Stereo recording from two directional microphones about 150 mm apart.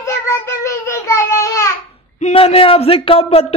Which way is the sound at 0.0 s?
20° left (ahead or behind).